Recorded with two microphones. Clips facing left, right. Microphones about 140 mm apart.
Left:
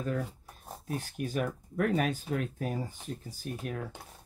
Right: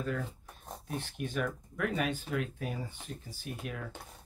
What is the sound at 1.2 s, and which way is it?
Speech, 40° left (ahead or behind).